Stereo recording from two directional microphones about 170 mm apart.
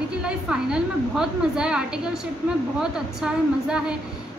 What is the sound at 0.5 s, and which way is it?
A woman's voice, 5° right (ahead or behind).